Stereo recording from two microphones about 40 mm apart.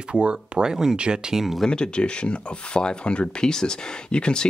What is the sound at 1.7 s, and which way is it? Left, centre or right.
Speech, left.